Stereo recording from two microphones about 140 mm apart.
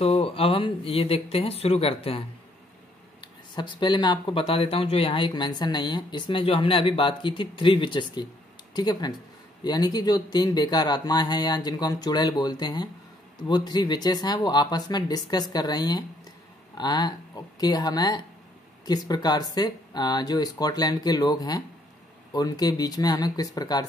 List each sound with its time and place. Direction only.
0.0 s a man's voice: 45° left (ahead or behind); by 23.9 s 25° left (ahead or behind)